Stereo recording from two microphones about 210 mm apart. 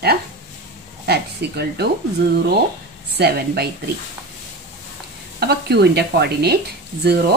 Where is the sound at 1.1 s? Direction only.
50° right (ahead or behind).